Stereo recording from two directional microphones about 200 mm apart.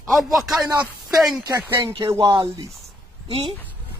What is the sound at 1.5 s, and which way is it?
Speech, 20° right (ahead or behind).